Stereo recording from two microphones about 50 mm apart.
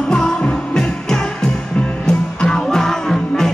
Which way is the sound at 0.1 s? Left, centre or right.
Centre.